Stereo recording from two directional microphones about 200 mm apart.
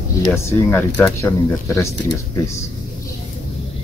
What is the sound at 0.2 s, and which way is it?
Speech, 15° left (ahead or behind).